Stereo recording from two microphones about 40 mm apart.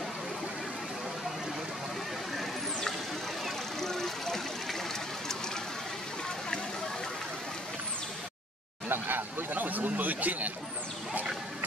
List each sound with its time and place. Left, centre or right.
3.8 s vehicle: centre
8.8 s speech: right